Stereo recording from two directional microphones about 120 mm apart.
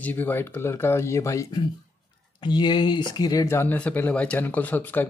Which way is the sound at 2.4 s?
40° left (ahead or behind).